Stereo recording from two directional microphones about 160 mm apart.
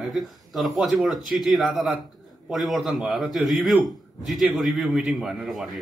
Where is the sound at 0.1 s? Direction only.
Centre (ahead or behind).